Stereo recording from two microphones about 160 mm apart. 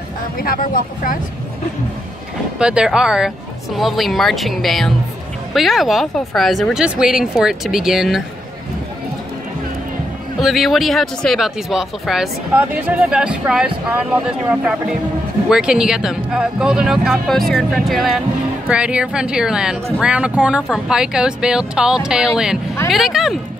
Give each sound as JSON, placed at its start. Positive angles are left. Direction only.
{"t": 0.4, "sound": "speech", "side_deg": 65}
{"t": 2.6, "sound": "a woman's voice", "side_deg": -5}
{"t": 10.4, "sound": "a woman's voice", "side_deg": 0}